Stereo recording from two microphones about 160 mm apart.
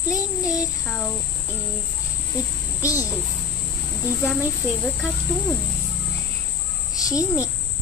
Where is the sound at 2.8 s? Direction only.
20° left (ahead or behind).